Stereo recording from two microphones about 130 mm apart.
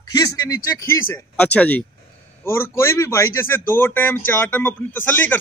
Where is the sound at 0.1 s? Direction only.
25° left (ahead or behind).